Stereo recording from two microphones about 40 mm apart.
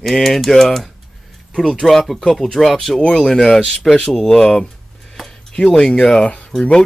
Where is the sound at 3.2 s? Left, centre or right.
Centre.